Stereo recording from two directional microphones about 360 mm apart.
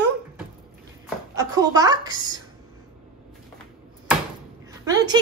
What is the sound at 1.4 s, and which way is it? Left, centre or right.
A woman's voice, centre.